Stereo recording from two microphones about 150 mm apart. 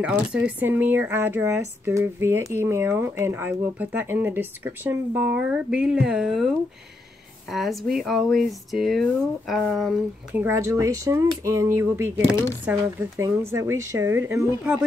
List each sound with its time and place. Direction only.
0.0 s speech: 10° right (ahead or behind)
10.3 s speech: 15° right (ahead or behind)